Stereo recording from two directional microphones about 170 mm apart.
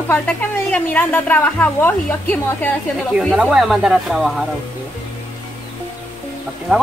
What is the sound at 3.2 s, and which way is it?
Speech, centre (ahead or behind).